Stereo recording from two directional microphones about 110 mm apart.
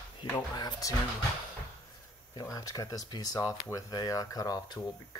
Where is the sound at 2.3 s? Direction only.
30° left (ahead or behind).